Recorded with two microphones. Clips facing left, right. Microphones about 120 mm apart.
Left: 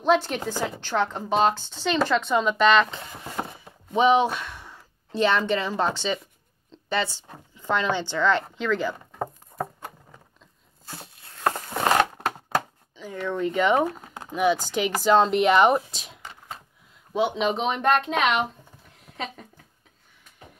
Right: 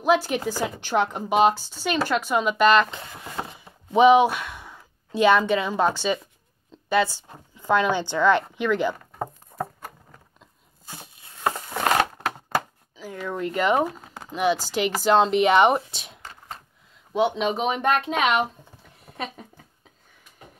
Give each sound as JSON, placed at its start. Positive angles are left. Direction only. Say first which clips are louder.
{"t": 0.0, "sound": "a woman's voice", "louder": "right 1 dB", "side_deg": -5}
{"t": 3.3, "sound": "chopping", "louder": "left 1 dB", "side_deg": 20}
{"t": 3.9, "sound": "a woman's voice", "louder": "right 4 dB", "side_deg": -15}
{"t": 6.7, "sound": "a sound", "louder": "right 5 dB", "side_deg": -5}
{"t": 7.2, "sound": "a woman's voice", "louder": "right 4 dB", "side_deg": -5}
{"t": 9.5, "sound": "a sound", "louder": "right 1 dB", "side_deg": 0}
{"t": 10.9, "sound": "a sound", "louder": "left 1 dB", "side_deg": -5}
{"t": 12.5, "sound": "chopping", "louder": "even", "side_deg": -5}
{"t": 14.2, "sound": "speech", "louder": "left 1 dB", "side_deg": 0}